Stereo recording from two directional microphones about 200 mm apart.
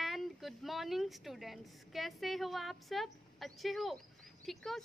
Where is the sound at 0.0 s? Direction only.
Centre (ahead or behind).